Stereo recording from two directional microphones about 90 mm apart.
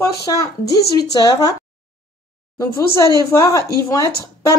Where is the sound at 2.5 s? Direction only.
35° left (ahead or behind).